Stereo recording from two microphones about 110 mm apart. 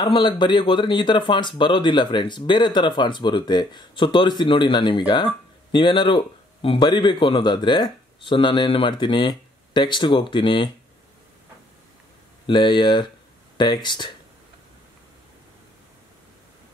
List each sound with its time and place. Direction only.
0.0 s speech: 45° left (ahead or behind)
12.4 s speech: 45° left (ahead or behind)